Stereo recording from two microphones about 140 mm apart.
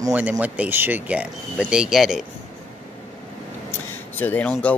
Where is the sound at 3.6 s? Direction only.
15° left (ahead or behind).